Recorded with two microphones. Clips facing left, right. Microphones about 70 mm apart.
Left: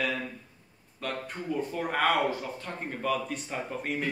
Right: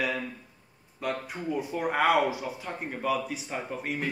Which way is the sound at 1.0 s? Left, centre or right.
Centre.